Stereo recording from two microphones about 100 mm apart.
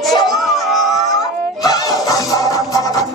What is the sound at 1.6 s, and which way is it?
Music, 40° left (ahead or behind).